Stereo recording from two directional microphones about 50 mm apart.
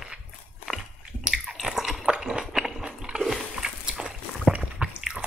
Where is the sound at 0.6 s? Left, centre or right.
Centre.